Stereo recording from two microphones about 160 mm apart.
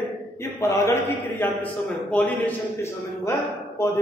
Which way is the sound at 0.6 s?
20° left (ahead or behind).